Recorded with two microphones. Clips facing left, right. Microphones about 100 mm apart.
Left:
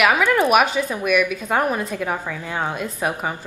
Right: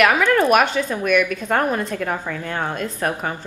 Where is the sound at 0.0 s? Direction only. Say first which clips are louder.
Right 1 dB; 10° left (ahead or behind).